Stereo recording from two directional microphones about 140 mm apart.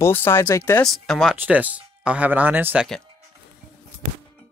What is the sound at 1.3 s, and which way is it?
Speech, 10° right (ahead or behind).